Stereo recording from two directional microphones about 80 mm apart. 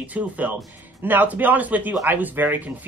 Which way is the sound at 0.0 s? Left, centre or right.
Centre.